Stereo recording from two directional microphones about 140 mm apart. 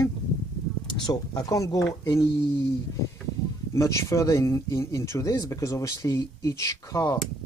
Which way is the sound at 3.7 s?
20° left (ahead or behind).